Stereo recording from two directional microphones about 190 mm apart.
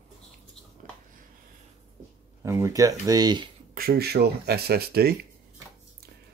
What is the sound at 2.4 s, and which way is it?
Speech, 15° right (ahead or behind).